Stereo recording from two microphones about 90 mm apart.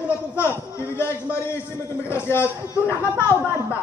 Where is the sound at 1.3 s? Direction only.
30° left (ahead or behind).